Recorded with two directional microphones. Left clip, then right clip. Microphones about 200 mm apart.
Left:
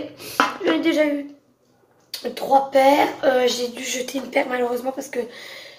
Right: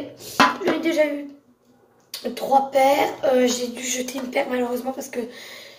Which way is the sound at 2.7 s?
5° left (ahead or behind).